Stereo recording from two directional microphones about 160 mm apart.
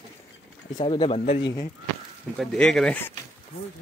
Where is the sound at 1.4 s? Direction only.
20° left (ahead or behind).